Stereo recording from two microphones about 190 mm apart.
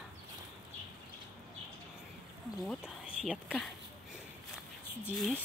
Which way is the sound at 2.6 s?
Centre (ahead or behind).